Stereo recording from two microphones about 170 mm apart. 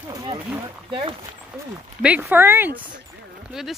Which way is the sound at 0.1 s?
25° right (ahead or behind).